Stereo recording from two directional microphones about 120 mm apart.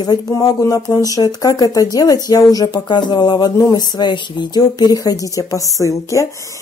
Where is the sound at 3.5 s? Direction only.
25° left (ahead or behind).